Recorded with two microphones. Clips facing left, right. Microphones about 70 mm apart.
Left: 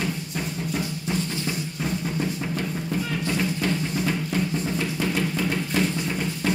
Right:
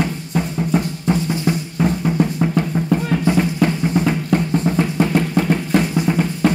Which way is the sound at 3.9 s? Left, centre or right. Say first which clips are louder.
Right 8 dB; right.